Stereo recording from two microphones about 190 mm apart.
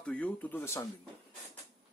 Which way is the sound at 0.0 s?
5° left (ahead or behind).